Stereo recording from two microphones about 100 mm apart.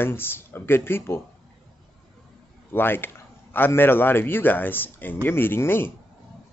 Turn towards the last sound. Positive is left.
turn(degrees=20)  # may be behind; listen again after turning